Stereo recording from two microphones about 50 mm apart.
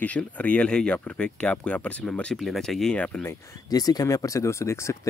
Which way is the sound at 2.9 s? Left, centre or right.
Left.